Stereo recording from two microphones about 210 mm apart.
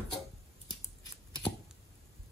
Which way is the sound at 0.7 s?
20° left (ahead or behind).